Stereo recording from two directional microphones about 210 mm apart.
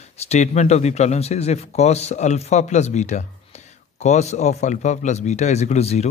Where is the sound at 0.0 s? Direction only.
30° left (ahead or behind).